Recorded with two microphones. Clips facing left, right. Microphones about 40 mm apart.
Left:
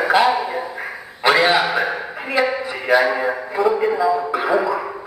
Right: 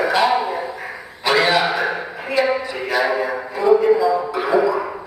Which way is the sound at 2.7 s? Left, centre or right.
Centre.